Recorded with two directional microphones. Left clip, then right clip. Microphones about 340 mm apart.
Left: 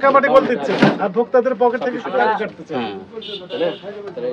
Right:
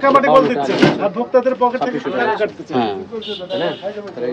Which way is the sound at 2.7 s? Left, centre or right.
Centre.